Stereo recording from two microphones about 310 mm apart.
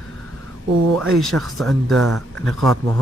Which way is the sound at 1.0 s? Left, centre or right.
Centre.